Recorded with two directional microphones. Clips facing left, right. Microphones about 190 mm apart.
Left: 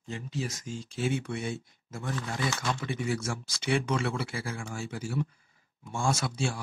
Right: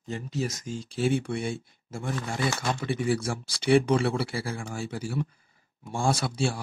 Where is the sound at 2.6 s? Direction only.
50° right (ahead or behind).